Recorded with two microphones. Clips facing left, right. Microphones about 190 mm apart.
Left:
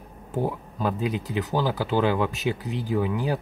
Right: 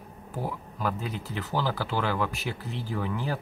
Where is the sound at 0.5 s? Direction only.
20° left (ahead or behind).